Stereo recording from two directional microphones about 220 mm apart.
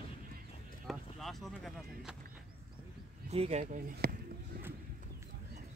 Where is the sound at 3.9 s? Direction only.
45° right (ahead or behind).